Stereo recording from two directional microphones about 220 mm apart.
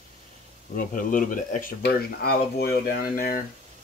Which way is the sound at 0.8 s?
40° left (ahead or behind).